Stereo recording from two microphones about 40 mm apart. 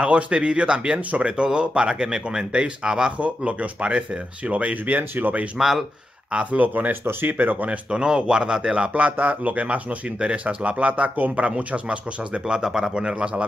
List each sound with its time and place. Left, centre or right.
0.0 s speech: right
3.2 s speech: right
5.6 s speech: centre
6.6 s speech: right
6.9 s speech: right
7.3 s speech: right
7.9 s speech: right
8.8 s speech: right
12.4 s speech: centre